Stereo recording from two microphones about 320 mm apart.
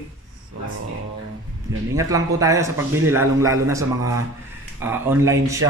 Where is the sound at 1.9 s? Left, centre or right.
Centre.